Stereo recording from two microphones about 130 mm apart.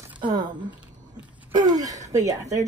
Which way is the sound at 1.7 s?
25° right (ahead or behind).